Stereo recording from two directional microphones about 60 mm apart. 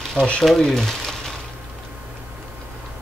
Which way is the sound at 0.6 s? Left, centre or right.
Centre.